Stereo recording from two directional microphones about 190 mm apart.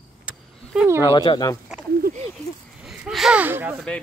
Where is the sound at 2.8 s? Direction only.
Centre (ahead or behind).